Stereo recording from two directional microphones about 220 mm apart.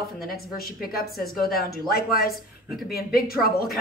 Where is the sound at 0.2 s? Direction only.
45° left (ahead or behind).